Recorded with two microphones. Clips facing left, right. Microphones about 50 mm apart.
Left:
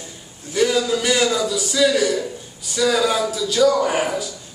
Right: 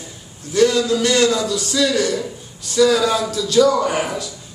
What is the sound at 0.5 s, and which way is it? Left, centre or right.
A man's voice, centre.